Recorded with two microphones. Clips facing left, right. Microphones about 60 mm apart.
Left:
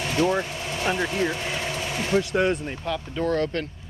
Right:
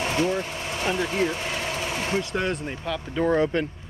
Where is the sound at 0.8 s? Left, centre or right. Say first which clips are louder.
Left 1 dB; centre.